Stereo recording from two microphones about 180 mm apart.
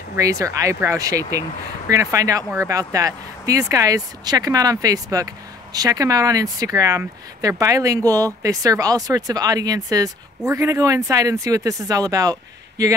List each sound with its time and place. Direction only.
0.1 s speech: 15° right (ahead or behind)